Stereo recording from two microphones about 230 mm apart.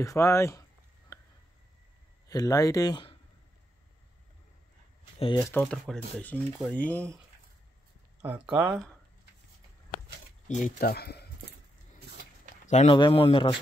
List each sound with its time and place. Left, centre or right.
0.0 s speech: centre
2.2 s speech: centre
5.2 s speech: centre
5.5 s speech: centre
8.2 s speech: centre
10.8 s speech: left
12.6 s speech: left